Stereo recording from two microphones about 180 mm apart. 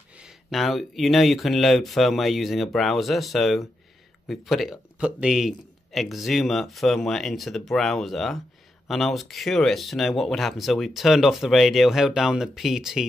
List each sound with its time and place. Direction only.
0.2 s speech: centre (ahead or behind)